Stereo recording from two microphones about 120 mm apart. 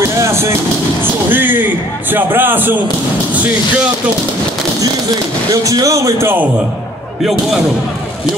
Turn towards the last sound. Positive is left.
turn(degrees=-20)  # may be behind; listen again after turning